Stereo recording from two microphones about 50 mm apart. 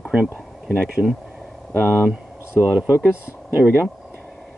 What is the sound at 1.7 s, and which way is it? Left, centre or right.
Speech, left.